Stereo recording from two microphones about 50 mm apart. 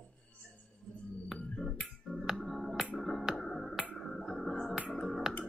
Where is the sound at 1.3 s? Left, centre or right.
Left.